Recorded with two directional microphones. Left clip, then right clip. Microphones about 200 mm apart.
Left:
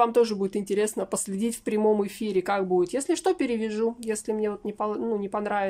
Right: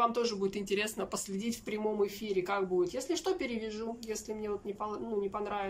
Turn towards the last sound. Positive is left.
turn(degrees=45)  # may be behind; listen again after turning